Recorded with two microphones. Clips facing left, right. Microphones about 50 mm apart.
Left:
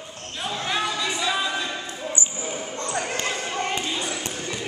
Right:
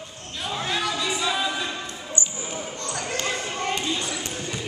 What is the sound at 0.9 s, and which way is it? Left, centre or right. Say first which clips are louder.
Music: even; centre.